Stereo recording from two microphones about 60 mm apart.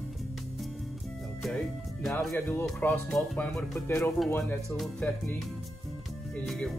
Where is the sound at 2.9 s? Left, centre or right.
Left.